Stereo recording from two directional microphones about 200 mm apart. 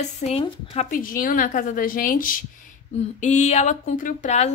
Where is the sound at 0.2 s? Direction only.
30° left (ahead or behind).